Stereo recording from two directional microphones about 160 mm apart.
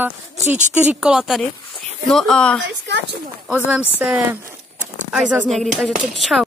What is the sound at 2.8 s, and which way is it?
Speech, 90° right.